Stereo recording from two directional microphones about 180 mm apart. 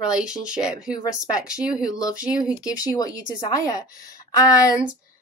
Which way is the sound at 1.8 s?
20° left (ahead or behind).